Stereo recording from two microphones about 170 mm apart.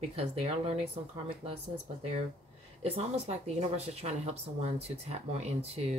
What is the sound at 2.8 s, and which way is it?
Speech, 40° right (ahead or behind).